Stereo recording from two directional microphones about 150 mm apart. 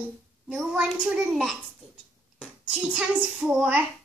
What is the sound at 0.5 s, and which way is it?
A child's voice, 5° right (ahead or behind).